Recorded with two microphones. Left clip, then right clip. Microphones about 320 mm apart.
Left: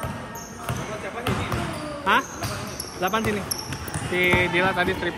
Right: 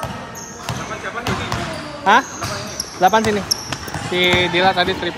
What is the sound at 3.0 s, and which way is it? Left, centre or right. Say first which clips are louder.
Speech: right 10 dB; centre.